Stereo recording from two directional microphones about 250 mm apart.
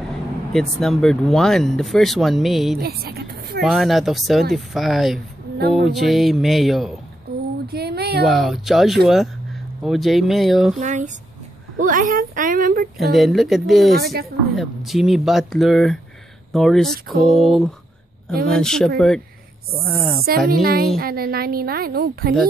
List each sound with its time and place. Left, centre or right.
0.5 s speech: centre
2.8 s a woman's voice: right
3.6 s speech: centre
7.6 s a sound: right
8.3 s speech: centre
10.8 s a woman's voice: right
13.1 s speech: centre
13.9 s a woman's voice: right
14.5 s speech: centre
20.2 s a woman's voice: right